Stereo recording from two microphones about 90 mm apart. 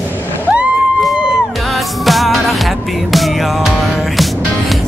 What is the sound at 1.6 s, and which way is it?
Music, centre (ahead or behind).